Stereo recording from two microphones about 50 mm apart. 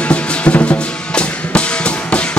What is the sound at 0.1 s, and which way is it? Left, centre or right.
Music, left.